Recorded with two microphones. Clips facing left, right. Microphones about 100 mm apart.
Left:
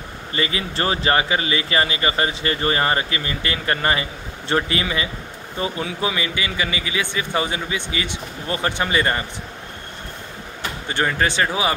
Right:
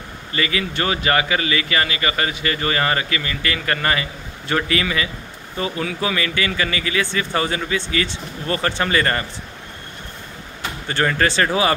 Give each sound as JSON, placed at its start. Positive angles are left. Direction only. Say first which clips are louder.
{"t": 0.3, "sound": "speech", "louder": "right 2 dB", "side_deg": 30}
{"t": 10.9, "sound": "speech", "louder": "right 2 dB", "side_deg": 15}